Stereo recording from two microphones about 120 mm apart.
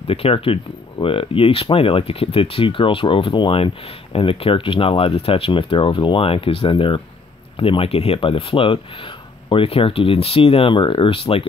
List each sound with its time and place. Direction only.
0.0 s speech: 50° left (ahead or behind)